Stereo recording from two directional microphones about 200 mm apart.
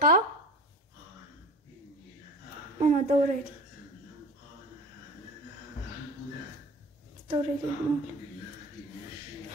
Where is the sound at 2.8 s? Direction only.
35° right (ahead or behind).